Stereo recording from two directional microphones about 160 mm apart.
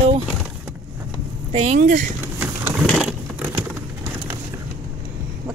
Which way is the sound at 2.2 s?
10° right (ahead or behind).